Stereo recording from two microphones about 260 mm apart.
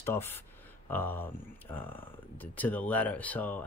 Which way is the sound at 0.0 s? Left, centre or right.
Centre.